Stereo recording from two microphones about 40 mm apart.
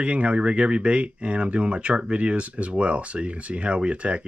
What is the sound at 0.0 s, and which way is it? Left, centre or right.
Speech, right.